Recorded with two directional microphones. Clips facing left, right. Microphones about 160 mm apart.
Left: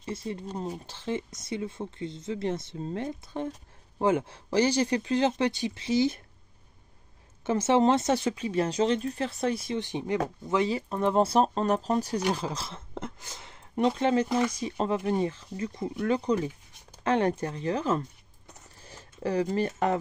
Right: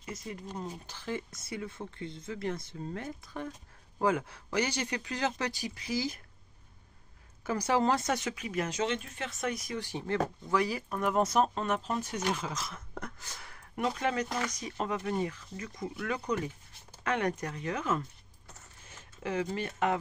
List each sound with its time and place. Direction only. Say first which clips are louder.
0.0 s speech: left 6 dB; 30° left (ahead or behind)
7.4 s speech: left 6 dB; 25° left (ahead or behind)
14.3 s speech: left 8 dB; 5° left (ahead or behind)
14.6 s speech: left 6 dB; 30° left (ahead or behind)